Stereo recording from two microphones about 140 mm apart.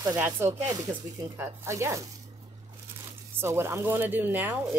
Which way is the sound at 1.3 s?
15° right (ahead or behind).